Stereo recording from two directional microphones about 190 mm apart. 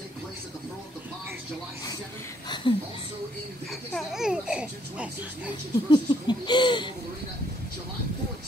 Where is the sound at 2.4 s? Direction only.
25° left (ahead or behind).